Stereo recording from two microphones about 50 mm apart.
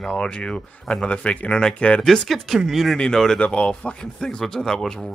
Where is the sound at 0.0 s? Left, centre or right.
Left.